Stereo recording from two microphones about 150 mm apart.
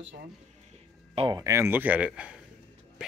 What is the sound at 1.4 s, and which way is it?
Speech, 20° right (ahead or behind).